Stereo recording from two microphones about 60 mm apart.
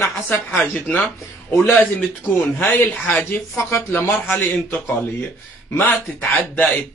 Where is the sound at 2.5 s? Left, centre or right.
Left.